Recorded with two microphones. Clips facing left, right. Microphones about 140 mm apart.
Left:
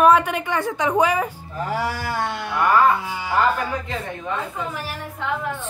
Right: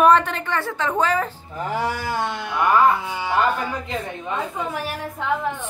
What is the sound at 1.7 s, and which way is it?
Speech, 20° right (ahead or behind).